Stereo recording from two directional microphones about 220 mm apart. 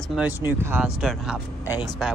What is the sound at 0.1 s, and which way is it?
A man's voice, 10° right (ahead or behind).